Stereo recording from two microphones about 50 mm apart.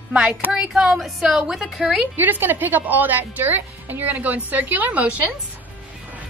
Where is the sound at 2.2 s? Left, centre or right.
Right.